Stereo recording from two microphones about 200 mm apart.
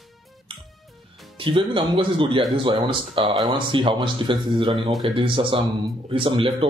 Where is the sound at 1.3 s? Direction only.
25° right (ahead or behind).